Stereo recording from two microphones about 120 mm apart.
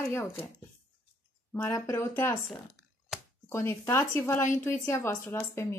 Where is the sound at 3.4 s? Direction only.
25° left (ahead or behind).